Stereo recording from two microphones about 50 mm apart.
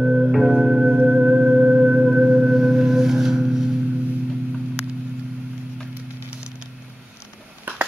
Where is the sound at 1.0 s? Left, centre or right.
Right.